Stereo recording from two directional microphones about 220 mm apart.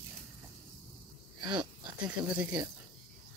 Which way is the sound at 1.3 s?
20° right (ahead or behind).